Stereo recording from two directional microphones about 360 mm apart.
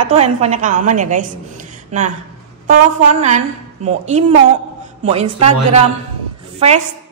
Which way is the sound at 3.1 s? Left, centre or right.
Centre.